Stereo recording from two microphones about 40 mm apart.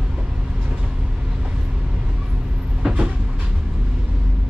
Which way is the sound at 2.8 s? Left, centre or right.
Right.